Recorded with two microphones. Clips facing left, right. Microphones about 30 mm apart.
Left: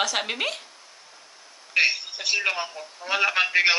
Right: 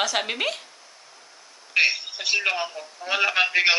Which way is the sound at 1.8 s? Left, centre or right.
Centre.